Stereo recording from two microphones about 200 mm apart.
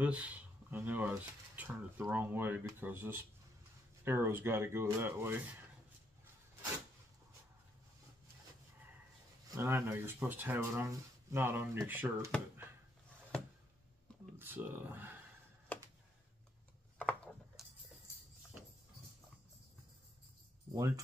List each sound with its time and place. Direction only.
0.0 s speech: 5° right (ahead or behind)
9.6 s speech: 10° right (ahead or behind)
14.4 s speech: 10° right (ahead or behind)
17.0 s a sound: 5° left (ahead or behind)
20.7 s speech: 15° right (ahead or behind)